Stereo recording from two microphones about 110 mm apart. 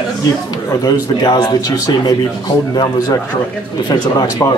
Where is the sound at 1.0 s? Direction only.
40° left (ahead or behind).